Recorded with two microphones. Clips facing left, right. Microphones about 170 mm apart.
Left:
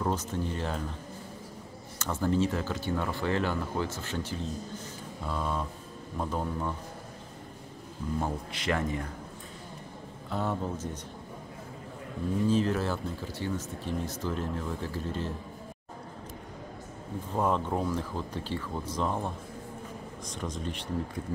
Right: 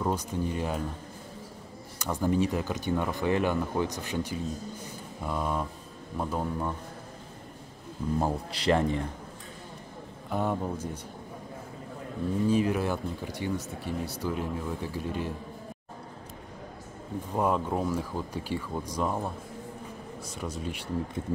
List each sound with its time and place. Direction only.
0.0 s speech: 10° right (ahead or behind)
2.0 s speech: 15° right (ahead or behind)
8.2 s speech: 35° right (ahead or behind)
10.3 s speech: 15° right (ahead or behind)
12.4 s speech: 10° right (ahead or behind)
17.4 s speech: 5° right (ahead or behind)